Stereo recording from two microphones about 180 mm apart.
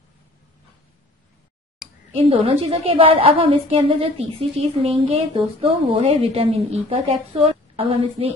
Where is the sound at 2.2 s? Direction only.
35° right (ahead or behind).